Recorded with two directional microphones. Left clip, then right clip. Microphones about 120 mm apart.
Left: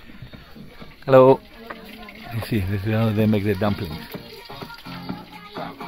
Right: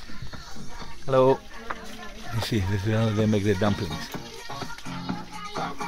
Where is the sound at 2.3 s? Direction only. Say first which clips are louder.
Left 1 dB; 10° left (ahead or behind).